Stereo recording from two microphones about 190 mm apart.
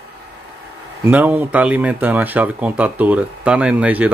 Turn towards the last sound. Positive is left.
turn(degrees=-10)  # may be behind; listen again after turning